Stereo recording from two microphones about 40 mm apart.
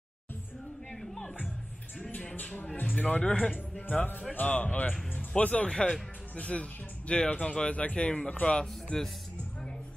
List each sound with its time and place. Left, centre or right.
1.0 s music: centre
2.0 s speech: left
2.3 s speech: left
2.6 s speech: left
5.7 s speech: left